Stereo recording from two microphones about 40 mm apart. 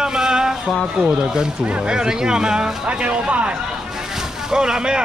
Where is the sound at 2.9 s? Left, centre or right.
Right.